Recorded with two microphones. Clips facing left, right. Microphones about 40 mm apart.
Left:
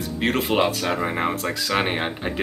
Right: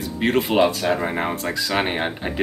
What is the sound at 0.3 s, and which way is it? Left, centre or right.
Speech, centre.